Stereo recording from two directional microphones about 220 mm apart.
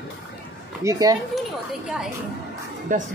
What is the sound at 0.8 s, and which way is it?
Speech, 15° right (ahead or behind).